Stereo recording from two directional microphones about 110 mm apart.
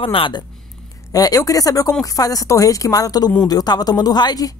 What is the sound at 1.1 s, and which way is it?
Speech, 35° left (ahead or behind).